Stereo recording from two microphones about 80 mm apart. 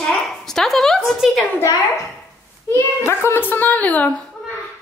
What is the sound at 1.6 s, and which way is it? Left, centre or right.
Speech, left.